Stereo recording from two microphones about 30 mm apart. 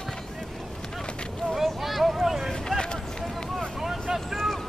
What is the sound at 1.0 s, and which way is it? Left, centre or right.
Vehicle, left.